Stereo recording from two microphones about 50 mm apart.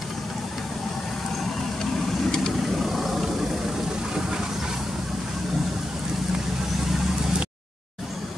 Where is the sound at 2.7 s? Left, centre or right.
Centre.